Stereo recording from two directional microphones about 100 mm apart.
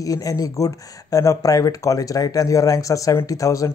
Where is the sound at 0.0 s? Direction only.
35° left (ahead or behind).